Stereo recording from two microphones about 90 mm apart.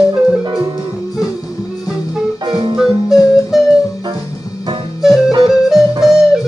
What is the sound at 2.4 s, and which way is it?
Music, 65° right (ahead or behind).